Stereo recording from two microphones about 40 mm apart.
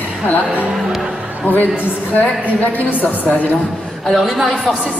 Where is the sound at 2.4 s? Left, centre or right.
Left.